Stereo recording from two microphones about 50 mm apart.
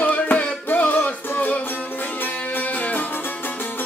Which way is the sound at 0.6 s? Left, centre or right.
Left.